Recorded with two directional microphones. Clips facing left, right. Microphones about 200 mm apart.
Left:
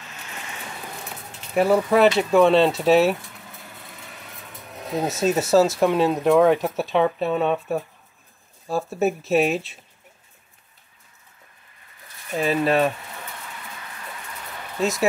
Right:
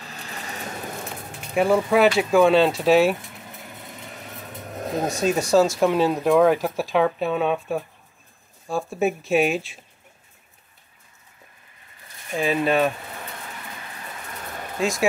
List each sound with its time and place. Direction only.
0.0 s vehicle: 35° right (ahead or behind)
1.5 s speech: centre (ahead or behind)
5.0 s speech: 5° left (ahead or behind)
12.3 s speech: centre (ahead or behind)